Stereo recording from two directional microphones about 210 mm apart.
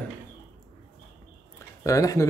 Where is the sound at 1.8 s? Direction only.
15° left (ahead or behind).